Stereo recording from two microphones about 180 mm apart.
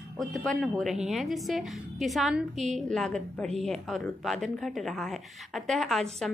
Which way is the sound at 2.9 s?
5° left (ahead or behind).